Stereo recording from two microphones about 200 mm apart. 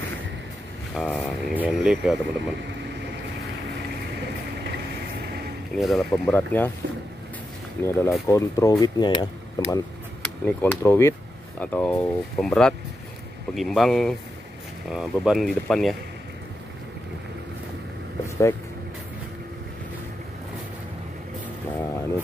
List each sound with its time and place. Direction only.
0.9 s speech: 5° left (ahead or behind)
1.5 s speech: 5° right (ahead or behind)
5.8 s speech: centre (ahead or behind)
7.8 s speech: 15° left (ahead or behind)
18.2 s vehicle: 15° left (ahead or behind)